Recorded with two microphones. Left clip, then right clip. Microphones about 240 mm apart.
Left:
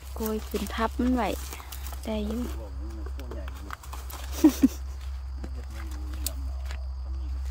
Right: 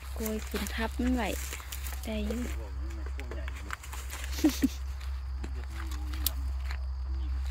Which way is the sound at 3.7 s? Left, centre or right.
Left.